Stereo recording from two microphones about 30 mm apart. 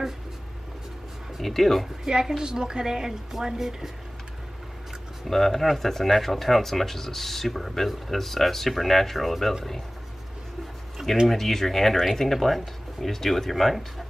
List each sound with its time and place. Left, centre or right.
1.4 s speech: centre
2.0 s a woman's voice: centre
5.2 s speech: centre
11.2 s speech: centre